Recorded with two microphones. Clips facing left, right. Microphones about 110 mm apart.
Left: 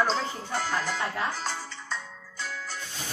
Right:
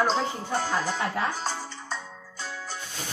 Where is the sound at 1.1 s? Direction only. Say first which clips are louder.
Right 2 dB; 25° right (ahead or behind).